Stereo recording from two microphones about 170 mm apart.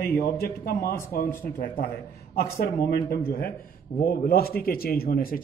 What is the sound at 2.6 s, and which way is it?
Speech, 65° left (ahead or behind).